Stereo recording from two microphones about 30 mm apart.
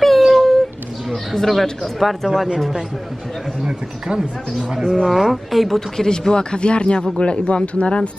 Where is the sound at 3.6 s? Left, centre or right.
Right.